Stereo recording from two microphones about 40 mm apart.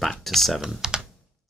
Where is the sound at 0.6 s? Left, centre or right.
Centre.